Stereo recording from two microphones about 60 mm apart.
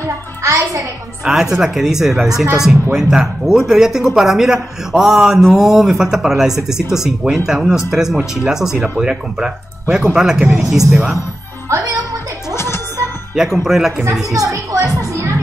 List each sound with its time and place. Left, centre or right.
0.0 s music: right
1.2 s speech: centre
12.5 s music: left
13.7 s speech: centre
14.3 s music: right